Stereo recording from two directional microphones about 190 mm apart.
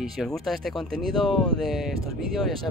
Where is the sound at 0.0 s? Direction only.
Centre (ahead or behind).